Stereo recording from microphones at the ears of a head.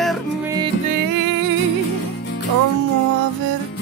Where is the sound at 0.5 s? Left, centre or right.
Right.